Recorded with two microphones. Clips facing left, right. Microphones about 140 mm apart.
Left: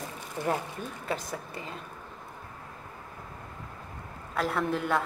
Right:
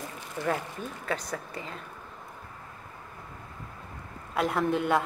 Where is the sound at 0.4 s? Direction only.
20° left (ahead or behind).